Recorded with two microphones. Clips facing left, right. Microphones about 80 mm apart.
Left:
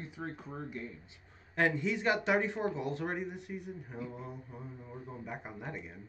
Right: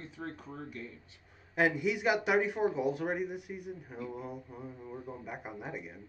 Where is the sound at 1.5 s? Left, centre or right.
Centre.